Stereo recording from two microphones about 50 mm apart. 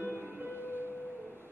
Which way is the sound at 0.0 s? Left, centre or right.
Left.